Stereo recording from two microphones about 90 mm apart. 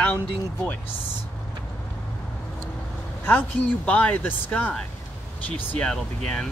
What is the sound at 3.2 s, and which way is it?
Speech, 20° left (ahead or behind).